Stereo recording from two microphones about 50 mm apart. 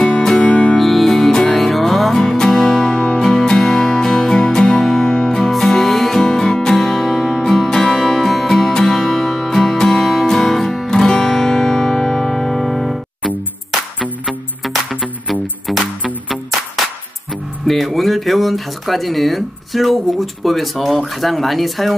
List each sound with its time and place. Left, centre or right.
0.0 s music: centre
0.7 s music: centre
14.2 s music: centre
17.6 s speech: centre